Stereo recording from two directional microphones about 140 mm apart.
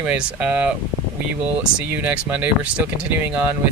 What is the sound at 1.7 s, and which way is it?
Speech, 10° right (ahead or behind).